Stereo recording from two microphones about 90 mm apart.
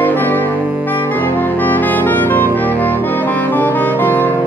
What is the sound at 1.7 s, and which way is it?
Brass instrument, 20° left (ahead or behind).